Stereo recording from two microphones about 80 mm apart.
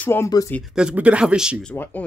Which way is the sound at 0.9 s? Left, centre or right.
Centre.